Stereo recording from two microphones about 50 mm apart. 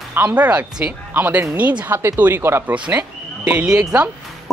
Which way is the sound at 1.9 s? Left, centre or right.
Right.